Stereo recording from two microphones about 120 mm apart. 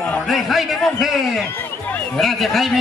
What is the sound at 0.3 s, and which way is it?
A man's voice, centre (ahead or behind).